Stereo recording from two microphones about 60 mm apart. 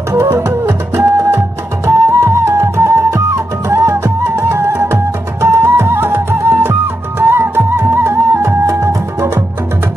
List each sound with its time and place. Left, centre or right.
0.1 s music: right